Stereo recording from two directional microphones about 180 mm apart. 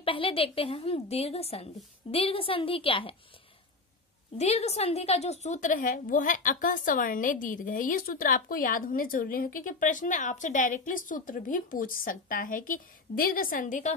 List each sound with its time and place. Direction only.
0.0 s a woman's voice: 30° left (ahead or behind)
4.4 s a woman's voice: 35° left (ahead or behind)